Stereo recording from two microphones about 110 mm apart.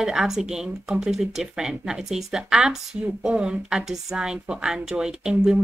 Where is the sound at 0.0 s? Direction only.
5° right (ahead or behind).